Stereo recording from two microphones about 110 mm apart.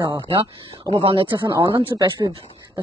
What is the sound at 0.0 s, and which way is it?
Speech, 40° right (ahead or behind).